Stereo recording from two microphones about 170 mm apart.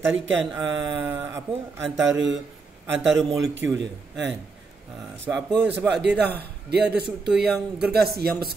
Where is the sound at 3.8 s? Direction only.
90° right.